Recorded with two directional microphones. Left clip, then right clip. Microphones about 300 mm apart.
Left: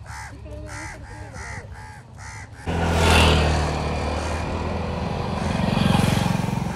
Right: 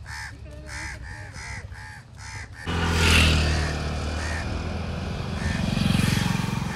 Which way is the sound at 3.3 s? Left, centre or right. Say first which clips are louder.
Left 5 dB; left.